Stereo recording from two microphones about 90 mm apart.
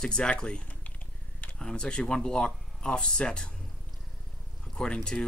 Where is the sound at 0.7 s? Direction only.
20° left (ahead or behind).